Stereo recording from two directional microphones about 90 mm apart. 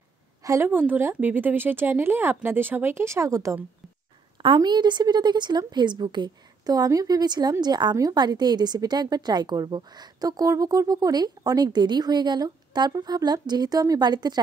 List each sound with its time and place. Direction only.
0.4 s a sound: 35° right (ahead or behind)
0.7 s speech: 20° right (ahead or behind)
4.6 s a woman's voice: 55° right (ahead or behind)